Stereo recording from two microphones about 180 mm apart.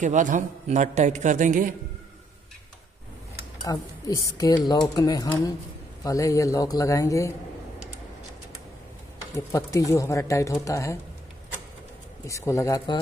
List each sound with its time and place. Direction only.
0.0 s a man's voice: 45° right (ahead or behind)
3.6 s speech: 20° left (ahead or behind)
9.3 s speech: 15° left (ahead or behind)
12.3 s speech: 15° left (ahead or behind)